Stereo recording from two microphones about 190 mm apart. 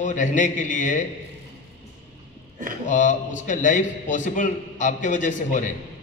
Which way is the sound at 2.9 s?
40° left (ahead or behind).